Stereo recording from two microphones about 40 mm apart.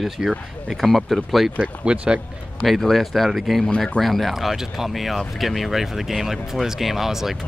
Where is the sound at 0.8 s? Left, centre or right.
Centre.